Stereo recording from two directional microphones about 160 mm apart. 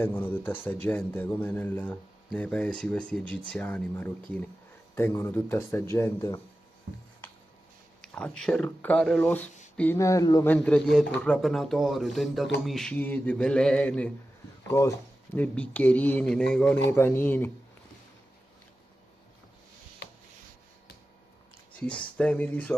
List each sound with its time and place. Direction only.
0.0 s speech: 15° left (ahead or behind)
8.0 s speech: 5° left (ahead or behind)
9.9 s speech: 20° left (ahead or behind)
10.4 s speech: 10° left (ahead or behind)
14.7 s speech: 20° left (ahead or behind)
21.7 s speech: 5° left (ahead or behind)